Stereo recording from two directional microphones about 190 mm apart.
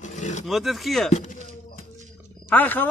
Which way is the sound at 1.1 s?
40° left (ahead or behind).